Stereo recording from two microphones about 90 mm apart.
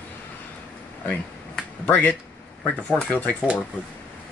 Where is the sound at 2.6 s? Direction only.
15° left (ahead or behind).